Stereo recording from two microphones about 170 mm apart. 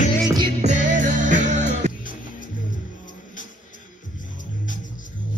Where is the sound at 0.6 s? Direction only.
45° right (ahead or behind).